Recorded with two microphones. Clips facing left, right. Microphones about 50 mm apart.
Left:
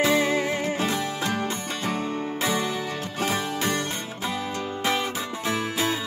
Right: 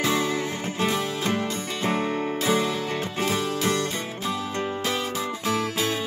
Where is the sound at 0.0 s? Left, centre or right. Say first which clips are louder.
Left 3 dB; left.